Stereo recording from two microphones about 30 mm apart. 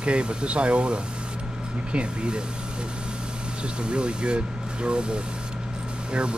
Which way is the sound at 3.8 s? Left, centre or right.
Right.